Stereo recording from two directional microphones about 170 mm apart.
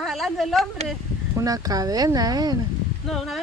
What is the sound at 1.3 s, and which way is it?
Speech, 20° right (ahead or behind).